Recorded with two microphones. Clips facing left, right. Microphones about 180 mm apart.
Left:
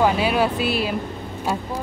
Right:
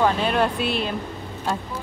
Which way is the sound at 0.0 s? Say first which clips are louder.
Left 2 dB; 10° left (ahead or behind).